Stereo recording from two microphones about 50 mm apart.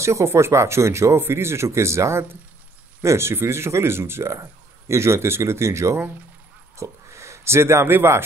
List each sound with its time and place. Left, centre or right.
0.0 s speech: right
1.2 s speech: right
3.0 s speech: right
6.8 s speech: right